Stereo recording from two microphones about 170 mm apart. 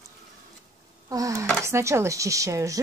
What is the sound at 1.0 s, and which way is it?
Speech, 20° right (ahead or behind).